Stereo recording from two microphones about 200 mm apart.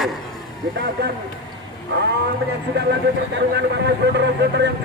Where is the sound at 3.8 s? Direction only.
55° right (ahead or behind).